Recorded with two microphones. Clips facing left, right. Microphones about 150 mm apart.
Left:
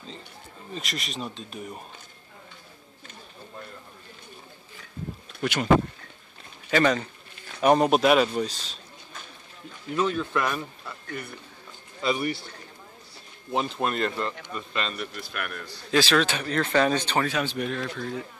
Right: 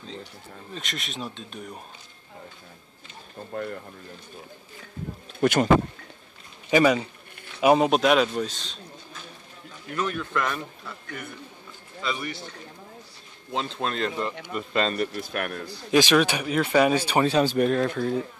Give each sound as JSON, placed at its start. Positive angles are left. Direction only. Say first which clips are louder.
{"t": 0.7, "sound": "a man's voice", "louder": "left 1 dB", "side_deg": 0}
{"t": 5.4, "sound": "speech", "louder": "right 7 dB", "side_deg": -45}
{"t": 6.7, "sound": "a man's voice", "louder": "right 3 dB", "side_deg": -10}
{"t": 9.9, "sound": "a man's voice", "louder": "left 3 dB", "side_deg": 20}
{"t": 10.3, "sound": "speech", "louder": "left 1 dB", "side_deg": 10}
{"t": 12.0, "sound": "a man's voice", "louder": "left 5 dB", "side_deg": 30}
{"t": 13.5, "sound": "speech", "louder": "left 2 dB", "side_deg": 15}
{"t": 14.1, "sound": "speech", "louder": "right 2 dB", "side_deg": -10}
{"t": 14.8, "sound": "speech", "louder": "right 7 dB", "side_deg": -45}
{"t": 15.9, "sound": "speech", "louder": "right 3 dB", "side_deg": -15}
{"t": 17.2, "sound": "speech", "louder": "right 6 dB", "side_deg": -30}
{"t": 17.6, "sound": "speech", "louder": "right 8 dB", "side_deg": -50}